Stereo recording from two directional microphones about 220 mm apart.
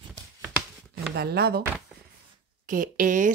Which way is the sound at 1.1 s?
45° right (ahead or behind).